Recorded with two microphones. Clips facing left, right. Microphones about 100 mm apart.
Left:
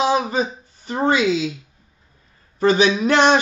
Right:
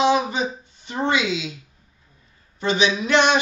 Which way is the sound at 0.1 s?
40° left (ahead or behind).